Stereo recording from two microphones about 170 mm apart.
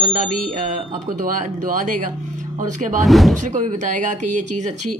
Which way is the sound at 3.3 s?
45° right (ahead or behind).